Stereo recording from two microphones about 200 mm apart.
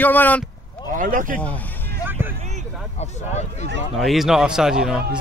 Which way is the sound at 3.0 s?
35° left (ahead or behind).